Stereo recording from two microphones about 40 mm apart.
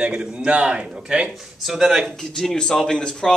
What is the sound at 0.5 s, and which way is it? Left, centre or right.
Speech, right.